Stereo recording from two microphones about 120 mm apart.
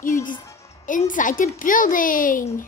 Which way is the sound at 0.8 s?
90° left.